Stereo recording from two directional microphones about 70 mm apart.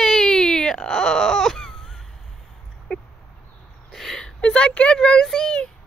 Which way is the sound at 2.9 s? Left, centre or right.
Centre.